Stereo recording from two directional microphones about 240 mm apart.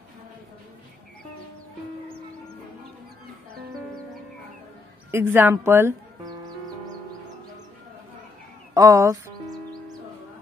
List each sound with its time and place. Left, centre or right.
5.1 s a woman's voice: centre
8.7 s a woman's voice: centre